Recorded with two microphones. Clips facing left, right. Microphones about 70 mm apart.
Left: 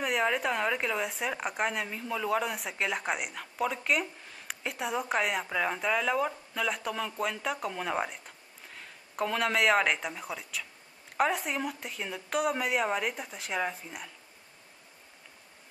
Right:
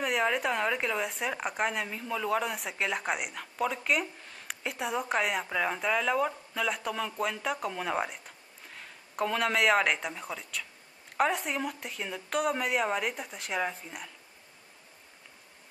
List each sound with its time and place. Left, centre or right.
0.0 s speech: centre